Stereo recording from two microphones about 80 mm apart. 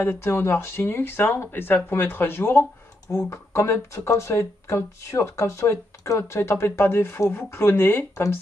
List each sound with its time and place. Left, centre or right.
0.0 s speech: left